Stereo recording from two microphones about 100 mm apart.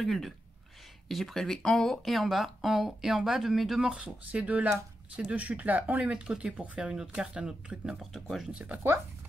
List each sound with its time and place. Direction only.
0.0 s speech: centre (ahead or behind)
8.5 s speech: 15° right (ahead or behind)